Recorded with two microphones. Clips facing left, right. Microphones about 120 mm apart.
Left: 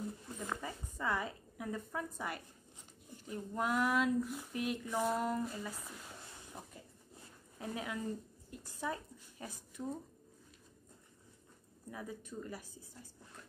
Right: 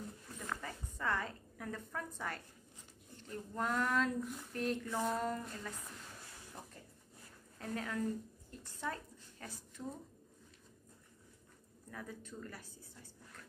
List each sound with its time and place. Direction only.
0.4 s a sound: 15° left (ahead or behind)
3.1 s speech: 10° left (ahead or behind)
7.5 s a woman's voice: 10° left (ahead or behind)
11.9 s speech: 10° left (ahead or behind)